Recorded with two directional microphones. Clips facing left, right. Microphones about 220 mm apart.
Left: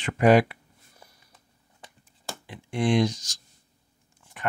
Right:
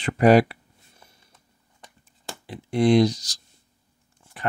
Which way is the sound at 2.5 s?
35° right (ahead or behind).